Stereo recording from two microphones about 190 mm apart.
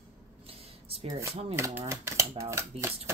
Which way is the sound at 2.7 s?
30° right (ahead or behind).